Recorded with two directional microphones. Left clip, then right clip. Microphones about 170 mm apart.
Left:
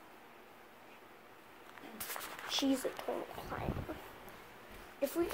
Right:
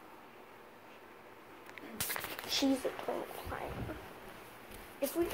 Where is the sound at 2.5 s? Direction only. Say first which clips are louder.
Right 2 dB; 5° right (ahead or behind).